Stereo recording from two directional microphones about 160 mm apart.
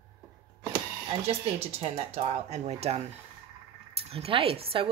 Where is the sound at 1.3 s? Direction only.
40° right (ahead or behind).